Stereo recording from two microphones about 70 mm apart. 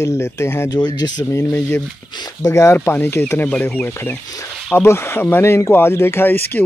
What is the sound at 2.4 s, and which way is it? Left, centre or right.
Speech, left.